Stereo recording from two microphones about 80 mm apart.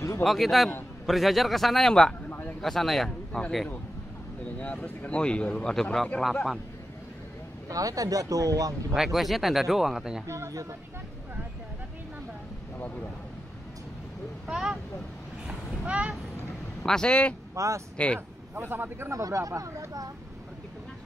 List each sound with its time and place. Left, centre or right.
0.2 s a man's voice: centre
4.6 s speech: centre
7.7 s speech: right
8.9 s a man's voice: centre
10.2 s speech: right
14.5 s speech: centre
15.4 s a sound: centre
16.8 s speech: centre
17.6 s speech: right
17.9 s speech: centre
18.5 s speech: right